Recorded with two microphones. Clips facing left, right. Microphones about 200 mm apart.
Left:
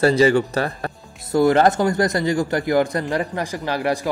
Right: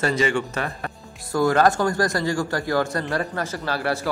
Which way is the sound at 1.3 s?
20° left (ahead or behind).